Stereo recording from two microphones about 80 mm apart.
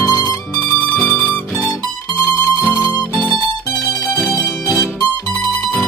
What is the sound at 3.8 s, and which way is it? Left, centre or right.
Music, left.